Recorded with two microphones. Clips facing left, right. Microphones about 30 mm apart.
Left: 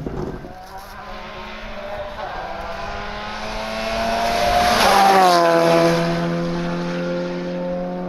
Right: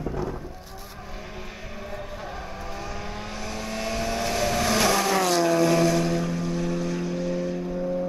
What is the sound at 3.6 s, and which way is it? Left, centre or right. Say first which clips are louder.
Vehicle: left 6 dB; left.